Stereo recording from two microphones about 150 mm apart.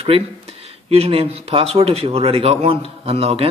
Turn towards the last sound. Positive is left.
turn(degrees=-40)  # may be behind; listen again after turning